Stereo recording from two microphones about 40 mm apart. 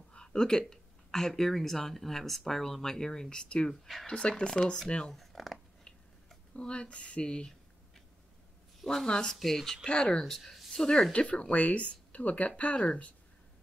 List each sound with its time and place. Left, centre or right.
0.1 s speech: left
3.8 s speech: centre
4.1 s speech: left
5.1 s speech: centre
6.5 s speech: left
8.8 s speech: centre
9.8 s speech: left
10.2 s speech: centre
11.1 s speech: left